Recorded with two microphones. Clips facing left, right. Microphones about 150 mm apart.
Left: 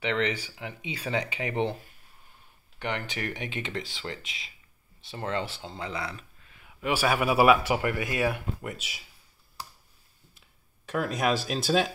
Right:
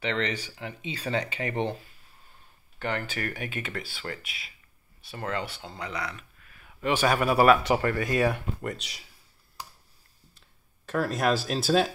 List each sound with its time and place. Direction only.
0.0 s speech: 10° left (ahead or behind)
2.8 s speech: 20° left (ahead or behind)
6.8 s speech: 5° left (ahead or behind)
10.9 s speech: centre (ahead or behind)